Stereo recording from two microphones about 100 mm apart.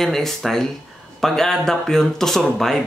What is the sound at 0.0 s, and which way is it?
Speech, 5° left (ahead or behind).